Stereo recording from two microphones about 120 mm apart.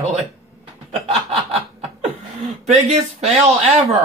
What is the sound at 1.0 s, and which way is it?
Snicker, 60° right (ahead or behind).